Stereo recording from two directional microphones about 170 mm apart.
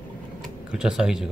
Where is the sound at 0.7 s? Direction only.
5° right (ahead or behind).